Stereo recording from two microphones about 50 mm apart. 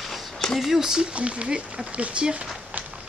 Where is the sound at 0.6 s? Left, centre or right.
Centre.